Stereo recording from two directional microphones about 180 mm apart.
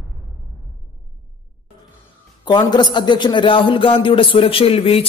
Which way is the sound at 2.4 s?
25° left (ahead or behind).